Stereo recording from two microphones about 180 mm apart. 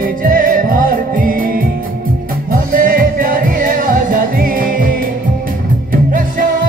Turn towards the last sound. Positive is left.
turn(degrees=-50)  # may be behind; listen again after turning